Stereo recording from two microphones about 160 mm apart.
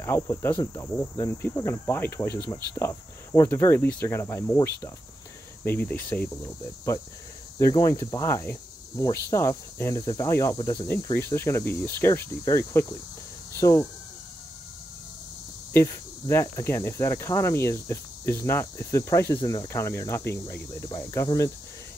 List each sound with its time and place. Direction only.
0.0 s speech: 15° left (ahead or behind)
15.7 s speech: 15° left (ahead or behind)